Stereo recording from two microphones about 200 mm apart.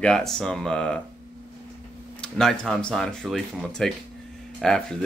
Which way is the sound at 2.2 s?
Centre (ahead or behind).